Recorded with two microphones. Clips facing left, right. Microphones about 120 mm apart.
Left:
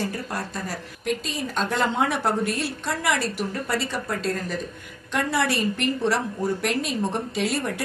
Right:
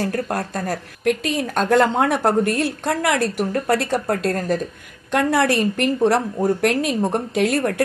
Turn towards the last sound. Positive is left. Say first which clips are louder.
# right 6 dB
turn(degrees=-60)  # may be behind; listen again after turning